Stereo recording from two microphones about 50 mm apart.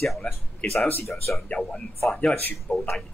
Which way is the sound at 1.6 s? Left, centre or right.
Centre.